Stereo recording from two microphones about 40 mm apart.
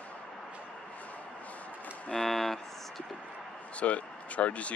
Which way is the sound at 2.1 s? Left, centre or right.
Centre.